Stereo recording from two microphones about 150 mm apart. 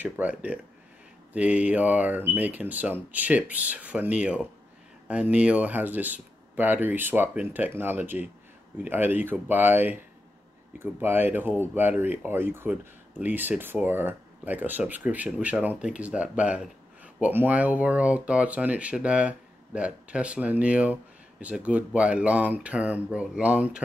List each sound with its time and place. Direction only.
0.0 s speech: 10° right (ahead or behind)